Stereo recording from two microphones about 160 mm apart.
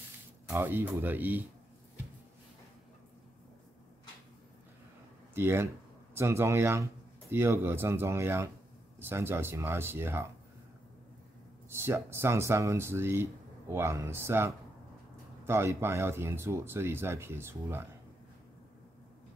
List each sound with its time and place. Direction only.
0.5 s speech: 15° right (ahead or behind)
5.3 s speech: 15° right (ahead or behind)
11.7 s speech: 15° right (ahead or behind)